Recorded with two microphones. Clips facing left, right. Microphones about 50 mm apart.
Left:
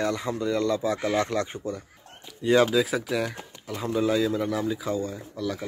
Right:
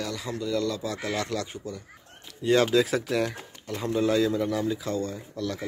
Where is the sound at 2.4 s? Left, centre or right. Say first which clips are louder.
Left 1 dB; centre.